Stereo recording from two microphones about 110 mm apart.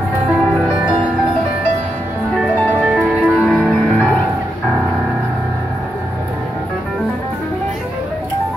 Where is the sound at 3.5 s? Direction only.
10° left (ahead or behind).